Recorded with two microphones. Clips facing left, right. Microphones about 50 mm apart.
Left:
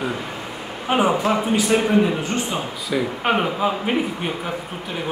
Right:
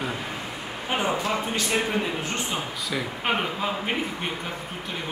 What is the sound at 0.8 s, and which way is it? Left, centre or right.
A man's voice, left.